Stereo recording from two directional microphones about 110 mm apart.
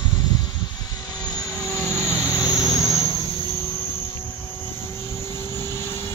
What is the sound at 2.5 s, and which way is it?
Vehicle, 35° left (ahead or behind).